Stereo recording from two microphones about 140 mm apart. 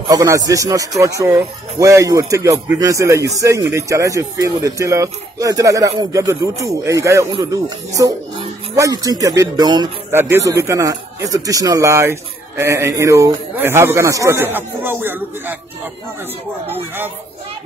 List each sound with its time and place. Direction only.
0.1 s speech: 25° right (ahead or behind)